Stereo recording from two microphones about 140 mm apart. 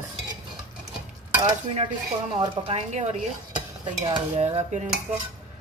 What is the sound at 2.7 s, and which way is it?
Speech, 50° right (ahead or behind).